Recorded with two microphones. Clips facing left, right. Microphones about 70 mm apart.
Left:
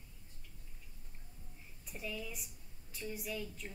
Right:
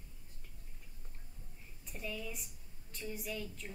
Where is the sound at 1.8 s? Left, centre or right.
Centre.